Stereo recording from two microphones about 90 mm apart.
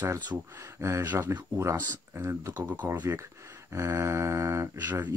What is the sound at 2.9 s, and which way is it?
Speech, 25° right (ahead or behind).